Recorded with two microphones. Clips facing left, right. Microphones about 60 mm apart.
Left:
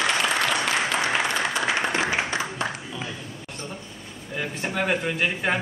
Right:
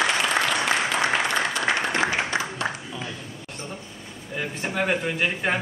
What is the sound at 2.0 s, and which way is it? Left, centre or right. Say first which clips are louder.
Applause: even; left.